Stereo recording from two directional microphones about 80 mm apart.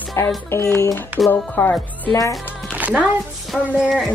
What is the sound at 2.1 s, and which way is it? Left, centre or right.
Speech, left.